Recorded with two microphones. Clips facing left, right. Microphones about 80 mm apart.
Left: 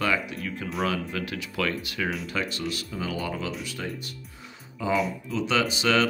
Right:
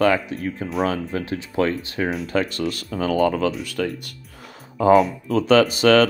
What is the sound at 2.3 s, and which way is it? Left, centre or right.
Speech, right.